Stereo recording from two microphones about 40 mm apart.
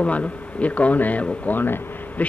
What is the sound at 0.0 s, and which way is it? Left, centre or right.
Speech, left.